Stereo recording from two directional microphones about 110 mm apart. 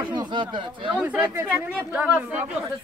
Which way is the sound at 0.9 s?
15° right (ahead or behind).